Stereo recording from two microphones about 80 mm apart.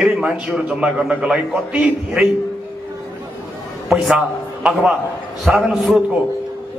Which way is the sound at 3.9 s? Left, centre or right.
Centre.